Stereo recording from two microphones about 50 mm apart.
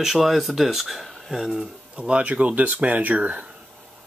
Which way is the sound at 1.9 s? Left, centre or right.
Right.